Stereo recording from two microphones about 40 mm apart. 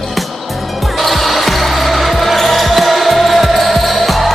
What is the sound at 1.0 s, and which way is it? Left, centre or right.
Basketball bounce, centre.